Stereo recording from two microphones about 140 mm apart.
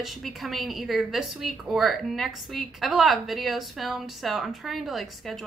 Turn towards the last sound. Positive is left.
turn(degrees=0)  # may be behind; listen again after turning